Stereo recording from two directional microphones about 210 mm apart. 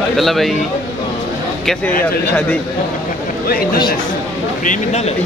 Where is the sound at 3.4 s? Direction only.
45° left (ahead or behind).